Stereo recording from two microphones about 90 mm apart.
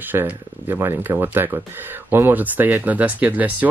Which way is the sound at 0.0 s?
20° right (ahead or behind).